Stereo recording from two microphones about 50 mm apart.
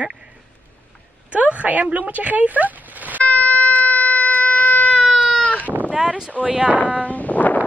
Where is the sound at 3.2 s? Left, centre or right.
Left.